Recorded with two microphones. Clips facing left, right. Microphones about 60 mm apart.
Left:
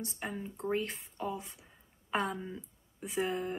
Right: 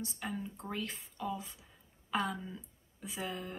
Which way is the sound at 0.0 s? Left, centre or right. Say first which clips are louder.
Left 1 dB; left.